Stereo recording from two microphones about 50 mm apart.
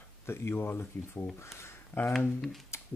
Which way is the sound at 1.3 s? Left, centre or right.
Left.